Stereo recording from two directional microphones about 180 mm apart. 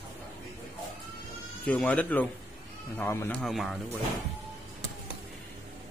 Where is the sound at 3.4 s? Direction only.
Centre (ahead or behind).